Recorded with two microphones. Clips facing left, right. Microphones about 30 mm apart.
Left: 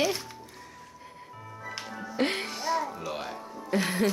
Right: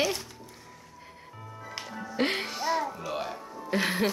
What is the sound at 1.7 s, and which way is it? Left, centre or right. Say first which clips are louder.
Music: right 1 dB; centre.